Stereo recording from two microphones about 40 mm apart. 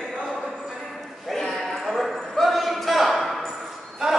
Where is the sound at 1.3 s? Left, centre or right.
Centre.